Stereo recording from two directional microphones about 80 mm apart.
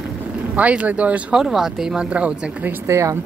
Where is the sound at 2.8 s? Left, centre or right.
Right.